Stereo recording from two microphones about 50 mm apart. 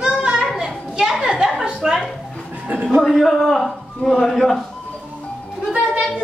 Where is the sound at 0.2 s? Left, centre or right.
Centre.